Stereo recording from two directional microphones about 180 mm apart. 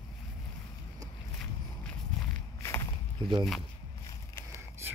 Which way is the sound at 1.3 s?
5° left (ahead or behind).